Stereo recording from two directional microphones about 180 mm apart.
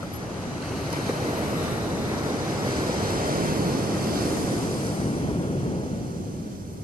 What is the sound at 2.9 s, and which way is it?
Waves, 55° right (ahead or behind).